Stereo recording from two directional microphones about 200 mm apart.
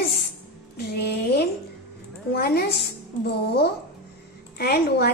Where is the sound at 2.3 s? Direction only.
50° left (ahead or behind).